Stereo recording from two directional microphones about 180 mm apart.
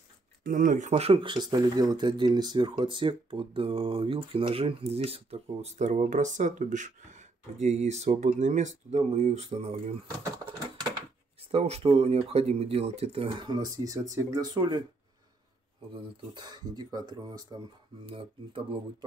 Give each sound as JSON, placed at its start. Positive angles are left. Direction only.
{"t": 0.4, "sound": "speech", "side_deg": -50}
{"t": 11.5, "sound": "speech", "side_deg": -35}
{"t": 15.9, "sound": "speech", "side_deg": -25}